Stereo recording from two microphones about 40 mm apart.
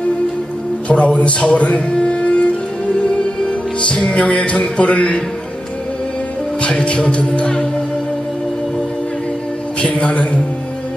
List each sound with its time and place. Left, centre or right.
0.8 s speech: left
3.0 s music: left
6.6 s music: left
9.8 s music: left